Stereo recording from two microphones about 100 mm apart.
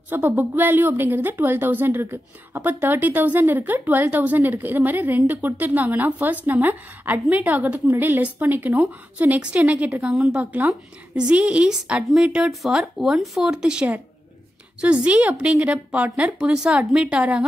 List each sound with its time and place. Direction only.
0.1 s a woman's voice: 20° right (ahead or behind)